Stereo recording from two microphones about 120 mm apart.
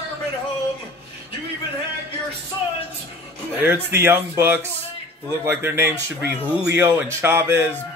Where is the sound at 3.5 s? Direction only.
15° right (ahead or behind).